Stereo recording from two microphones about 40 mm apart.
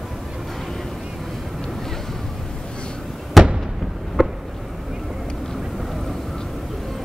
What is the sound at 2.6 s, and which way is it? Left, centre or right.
Vehicle, left.